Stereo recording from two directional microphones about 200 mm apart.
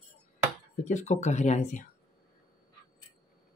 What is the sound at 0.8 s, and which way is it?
Speech, 35° left (ahead or behind).